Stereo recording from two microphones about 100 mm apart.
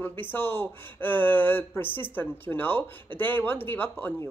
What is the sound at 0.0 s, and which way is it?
Speech, 20° left (ahead or behind).